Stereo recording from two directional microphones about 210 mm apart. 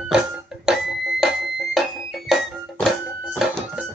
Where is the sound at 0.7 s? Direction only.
Centre (ahead or behind).